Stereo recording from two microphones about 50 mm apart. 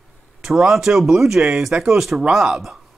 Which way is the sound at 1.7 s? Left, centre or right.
Centre.